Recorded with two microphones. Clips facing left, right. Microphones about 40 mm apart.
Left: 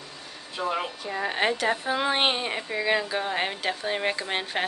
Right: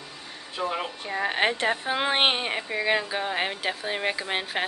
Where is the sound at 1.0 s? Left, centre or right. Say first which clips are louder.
Right 1 dB; right.